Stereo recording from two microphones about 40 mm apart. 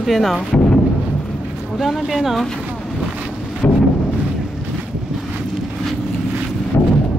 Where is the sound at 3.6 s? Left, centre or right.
Left.